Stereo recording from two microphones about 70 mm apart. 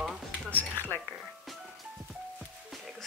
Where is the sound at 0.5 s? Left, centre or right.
Left.